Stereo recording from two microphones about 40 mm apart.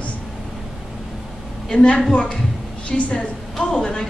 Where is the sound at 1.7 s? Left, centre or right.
Left.